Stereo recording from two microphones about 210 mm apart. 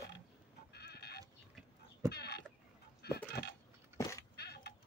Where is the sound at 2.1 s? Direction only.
50° left (ahead or behind).